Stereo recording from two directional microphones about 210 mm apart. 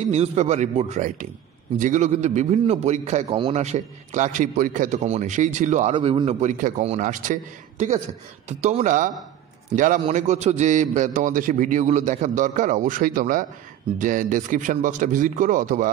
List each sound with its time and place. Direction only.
0.1 s a man's voice: 30° right (ahead or behind)
8.5 s a man's voice: 30° right (ahead or behind)